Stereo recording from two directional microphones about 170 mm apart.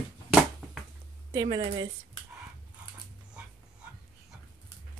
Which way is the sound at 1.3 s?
30° right (ahead or behind).